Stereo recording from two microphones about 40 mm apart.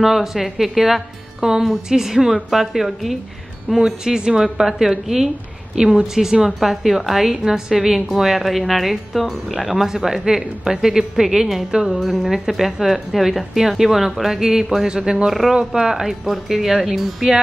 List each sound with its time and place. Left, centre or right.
0.0 s a woman's voice: centre
3.8 s speech: centre
6.4 s a woman's voice: centre
11.9 s speech: centre
14.9 s a woman's voice: centre